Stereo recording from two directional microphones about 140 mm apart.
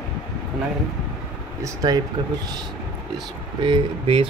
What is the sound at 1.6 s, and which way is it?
Speech, 25° right (ahead or behind).